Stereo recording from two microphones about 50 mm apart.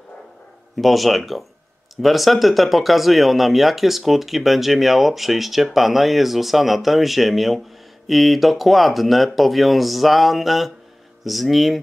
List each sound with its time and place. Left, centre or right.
0.7 s speech: centre